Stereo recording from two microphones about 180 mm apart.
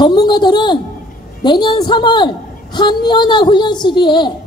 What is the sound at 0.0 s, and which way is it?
A woman's voice, 25° left (ahead or behind).